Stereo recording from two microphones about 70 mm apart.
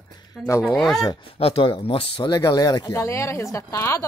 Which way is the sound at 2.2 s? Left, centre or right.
Left.